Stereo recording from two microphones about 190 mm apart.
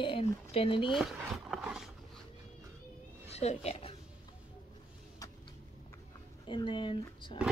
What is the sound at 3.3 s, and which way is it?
Speech, 35° left (ahead or behind).